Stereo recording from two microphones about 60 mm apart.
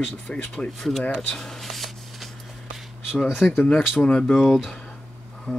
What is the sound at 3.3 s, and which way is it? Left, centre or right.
Speech, centre.